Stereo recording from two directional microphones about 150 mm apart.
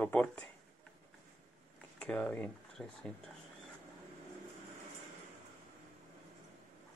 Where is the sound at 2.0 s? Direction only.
5° left (ahead or behind).